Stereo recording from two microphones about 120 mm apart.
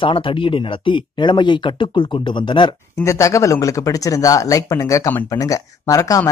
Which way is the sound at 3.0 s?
25° left (ahead or behind).